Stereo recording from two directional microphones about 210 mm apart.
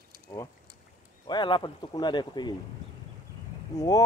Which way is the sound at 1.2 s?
20° left (ahead or behind).